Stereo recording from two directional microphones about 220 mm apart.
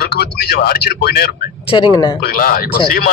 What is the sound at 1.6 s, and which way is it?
Speech, 20° left (ahead or behind).